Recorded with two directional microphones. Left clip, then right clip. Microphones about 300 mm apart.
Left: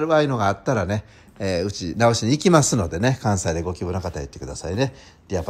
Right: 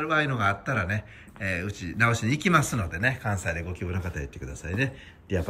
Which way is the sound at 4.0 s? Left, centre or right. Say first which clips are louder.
Left 6 dB; left.